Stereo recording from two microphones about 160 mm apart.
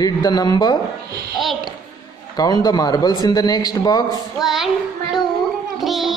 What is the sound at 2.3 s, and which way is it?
A man's voice, 25° left (ahead or behind).